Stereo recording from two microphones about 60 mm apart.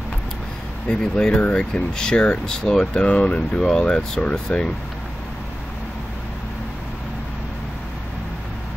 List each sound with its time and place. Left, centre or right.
0.8 s speech: centre